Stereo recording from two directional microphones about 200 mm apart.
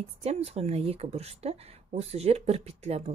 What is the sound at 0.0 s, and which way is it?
Speech, 30° right (ahead or behind).